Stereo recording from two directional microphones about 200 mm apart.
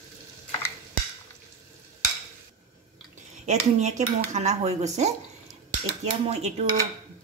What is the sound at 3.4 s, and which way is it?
Speech, 35° right (ahead or behind).